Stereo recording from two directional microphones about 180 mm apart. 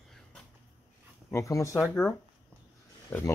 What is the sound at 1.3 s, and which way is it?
Speech, 15° left (ahead or behind).